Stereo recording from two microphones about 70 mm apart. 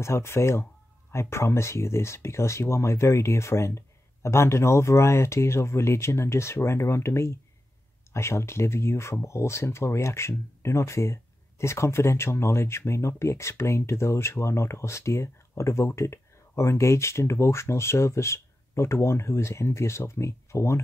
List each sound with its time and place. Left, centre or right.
0.0 s speech: left